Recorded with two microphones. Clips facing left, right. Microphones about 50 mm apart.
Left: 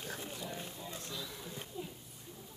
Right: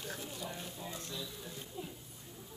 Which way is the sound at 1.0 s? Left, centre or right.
Left.